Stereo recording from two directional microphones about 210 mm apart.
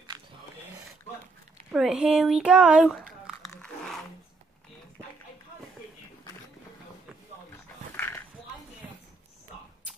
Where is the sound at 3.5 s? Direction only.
5° left (ahead or behind).